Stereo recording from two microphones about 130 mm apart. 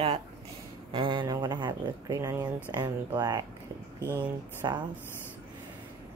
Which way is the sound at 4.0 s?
15° right (ahead or behind).